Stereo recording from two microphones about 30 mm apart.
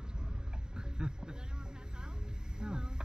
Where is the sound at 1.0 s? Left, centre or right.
Right.